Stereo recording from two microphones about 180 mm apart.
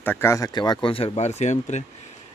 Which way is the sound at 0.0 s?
10° left (ahead or behind).